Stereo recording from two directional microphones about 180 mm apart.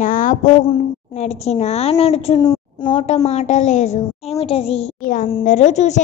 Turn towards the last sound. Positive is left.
turn(degrees=40)  # may be behind; listen again after turning